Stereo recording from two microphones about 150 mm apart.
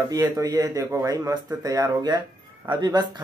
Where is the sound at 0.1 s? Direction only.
25° right (ahead or behind).